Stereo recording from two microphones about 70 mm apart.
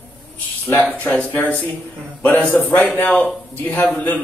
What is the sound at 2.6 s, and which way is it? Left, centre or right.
Speech, left.